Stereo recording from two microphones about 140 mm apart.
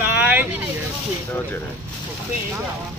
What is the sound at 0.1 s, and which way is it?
Vehicle, 10° right (ahead or behind).